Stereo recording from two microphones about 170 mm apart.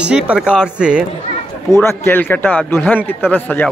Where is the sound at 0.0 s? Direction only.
5° right (ahead or behind).